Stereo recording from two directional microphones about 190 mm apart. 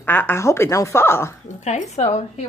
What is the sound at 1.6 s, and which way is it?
Speech, 35° left (ahead or behind).